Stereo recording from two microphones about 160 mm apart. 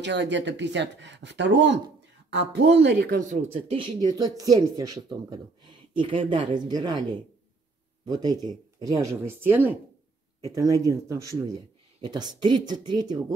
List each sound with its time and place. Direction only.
0.0 s speech: 90° right
3.5 s speech: 35° right (ahead or behind)
5.9 s speech: 35° right (ahead or behind)